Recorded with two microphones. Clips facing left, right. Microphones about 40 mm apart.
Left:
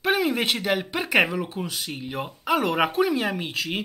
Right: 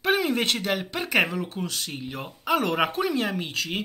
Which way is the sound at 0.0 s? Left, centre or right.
Centre.